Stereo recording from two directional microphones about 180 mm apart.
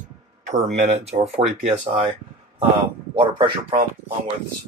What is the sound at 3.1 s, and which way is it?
Speech, 30° right (ahead or behind).